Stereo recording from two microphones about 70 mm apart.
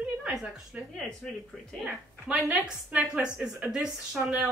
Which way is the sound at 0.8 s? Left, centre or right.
Right.